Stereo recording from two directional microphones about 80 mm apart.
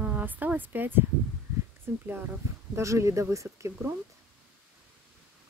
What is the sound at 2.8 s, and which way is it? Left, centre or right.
Speech, right.